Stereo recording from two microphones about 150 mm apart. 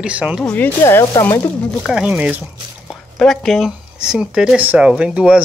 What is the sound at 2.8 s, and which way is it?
Speech, centre (ahead or behind).